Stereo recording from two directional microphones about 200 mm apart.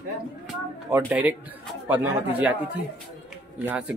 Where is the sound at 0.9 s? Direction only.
10° right (ahead or behind).